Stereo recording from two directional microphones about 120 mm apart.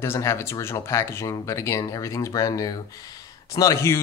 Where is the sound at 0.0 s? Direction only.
20° left (ahead or behind).